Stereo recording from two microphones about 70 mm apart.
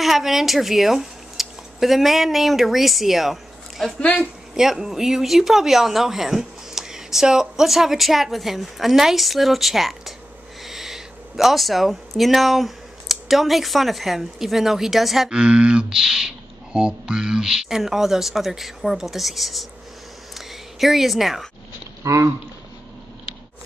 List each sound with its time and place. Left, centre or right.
0.0 s speech: centre
4.0 s a woman's voice: centre
4.6 s speech: centre
20.3 s a sound: centre
22.0 s speech: right